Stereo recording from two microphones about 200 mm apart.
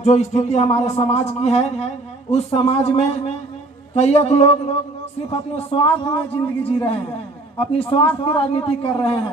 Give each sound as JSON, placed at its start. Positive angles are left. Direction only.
{"t": 0.0, "sound": "a man's voice", "side_deg": 35}